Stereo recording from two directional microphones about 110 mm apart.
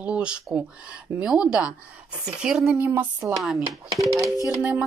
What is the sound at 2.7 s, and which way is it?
Speech, 15° right (ahead or behind).